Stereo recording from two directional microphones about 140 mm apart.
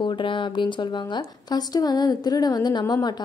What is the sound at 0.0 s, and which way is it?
A woman's voice, 35° left (ahead or behind).